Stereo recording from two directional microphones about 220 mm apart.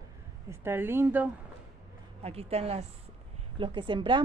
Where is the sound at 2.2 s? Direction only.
25° right (ahead or behind).